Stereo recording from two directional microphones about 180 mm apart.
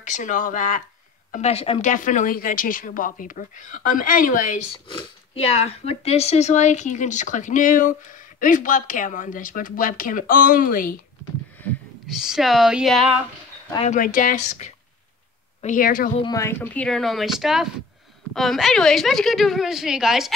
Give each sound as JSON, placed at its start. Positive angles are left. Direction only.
{"t": 0.0, "sound": "speech", "side_deg": 45}
{"t": 4.9, "sound": "speech", "side_deg": 35}
{"t": 12.1, "sound": "a woman's voice", "side_deg": 0}
{"t": 13.7, "sound": "speech", "side_deg": 45}
{"t": 16.2, "sound": "a woman's voice", "side_deg": 20}